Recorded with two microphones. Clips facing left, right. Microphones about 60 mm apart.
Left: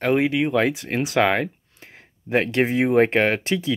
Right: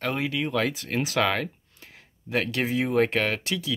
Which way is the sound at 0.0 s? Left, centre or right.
Left.